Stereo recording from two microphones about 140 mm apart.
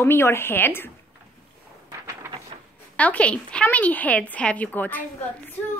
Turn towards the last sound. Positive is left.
turn(degrees=10)  # may be behind; listen again after turning